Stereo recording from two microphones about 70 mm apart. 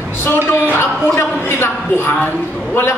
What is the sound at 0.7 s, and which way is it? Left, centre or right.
A man's voice, left.